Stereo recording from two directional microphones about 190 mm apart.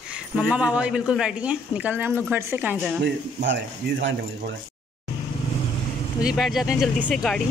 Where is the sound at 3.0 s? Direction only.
65° right (ahead or behind).